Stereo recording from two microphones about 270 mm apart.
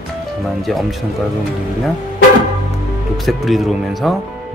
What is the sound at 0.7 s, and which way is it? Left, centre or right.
Speech, centre.